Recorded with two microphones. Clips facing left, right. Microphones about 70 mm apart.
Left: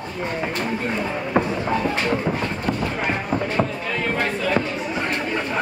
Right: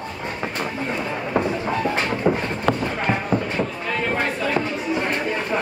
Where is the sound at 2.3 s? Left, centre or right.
Centre.